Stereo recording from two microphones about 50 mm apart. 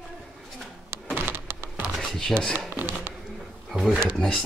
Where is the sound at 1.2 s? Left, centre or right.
Right.